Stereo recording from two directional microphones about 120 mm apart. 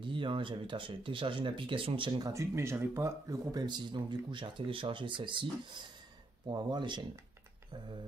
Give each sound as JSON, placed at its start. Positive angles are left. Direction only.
{"t": 0.0, "sound": "speech", "side_deg": -45}
{"t": 2.3, "sound": "speech", "side_deg": -20}